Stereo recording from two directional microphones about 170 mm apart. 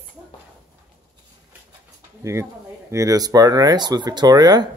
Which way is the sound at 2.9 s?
20° right (ahead or behind).